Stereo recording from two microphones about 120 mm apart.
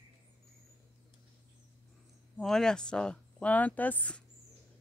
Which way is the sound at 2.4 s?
5° left (ahead or behind).